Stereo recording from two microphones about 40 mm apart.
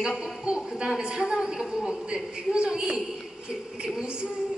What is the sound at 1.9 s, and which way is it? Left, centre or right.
A woman's voice, right.